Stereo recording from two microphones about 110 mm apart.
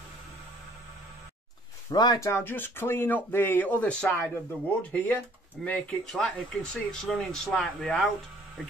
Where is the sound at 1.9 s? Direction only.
40° left (ahead or behind).